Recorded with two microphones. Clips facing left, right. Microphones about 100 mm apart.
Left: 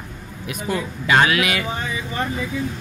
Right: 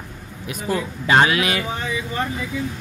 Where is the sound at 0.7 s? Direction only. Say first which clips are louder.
Right 1 dB; 30° right (ahead or behind).